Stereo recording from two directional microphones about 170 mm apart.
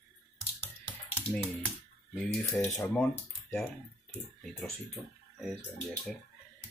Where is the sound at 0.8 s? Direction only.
10° left (ahead or behind).